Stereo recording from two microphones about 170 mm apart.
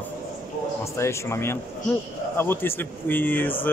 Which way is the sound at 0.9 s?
15° left (ahead or behind).